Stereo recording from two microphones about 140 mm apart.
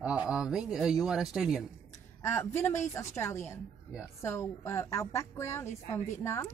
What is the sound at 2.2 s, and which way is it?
A woman's voice, 20° left (ahead or behind).